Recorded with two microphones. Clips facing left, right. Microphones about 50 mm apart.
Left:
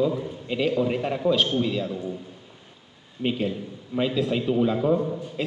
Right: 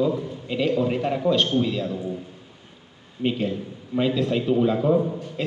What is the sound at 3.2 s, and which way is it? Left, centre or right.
Speech, centre.